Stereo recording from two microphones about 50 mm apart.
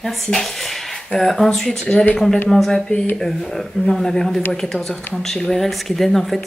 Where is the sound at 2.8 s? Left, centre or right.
Centre.